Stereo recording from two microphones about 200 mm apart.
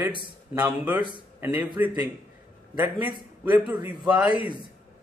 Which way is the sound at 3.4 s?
10° right (ahead or behind).